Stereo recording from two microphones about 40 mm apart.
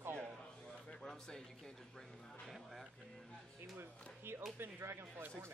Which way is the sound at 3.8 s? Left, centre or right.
Right.